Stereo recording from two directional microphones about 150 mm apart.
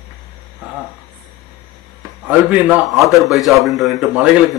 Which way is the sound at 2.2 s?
10° right (ahead or behind).